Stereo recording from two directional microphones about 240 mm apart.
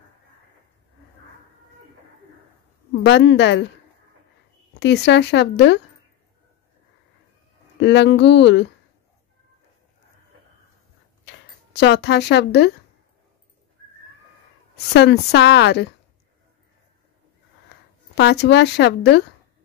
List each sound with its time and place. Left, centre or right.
3.0 s a woman's voice: left
4.7 s a woman's voice: left
7.8 s a woman's voice: left
11.2 s speech: left
14.9 s a woman's voice: left
18.1 s a woman's voice: left